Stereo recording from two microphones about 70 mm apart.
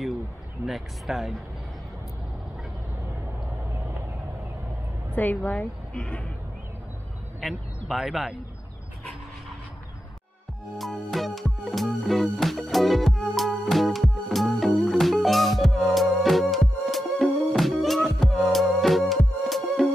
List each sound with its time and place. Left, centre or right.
0.7 s speech: centre
5.1 s a woman's voice: left
7.3 s speech: centre
10.8 s music: centre